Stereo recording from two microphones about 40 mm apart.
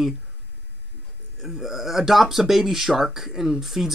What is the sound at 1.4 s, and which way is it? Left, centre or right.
Speech, centre.